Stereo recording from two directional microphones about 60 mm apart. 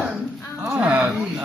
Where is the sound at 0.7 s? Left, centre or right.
Right.